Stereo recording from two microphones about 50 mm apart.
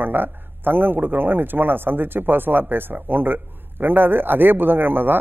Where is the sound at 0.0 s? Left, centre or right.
Right.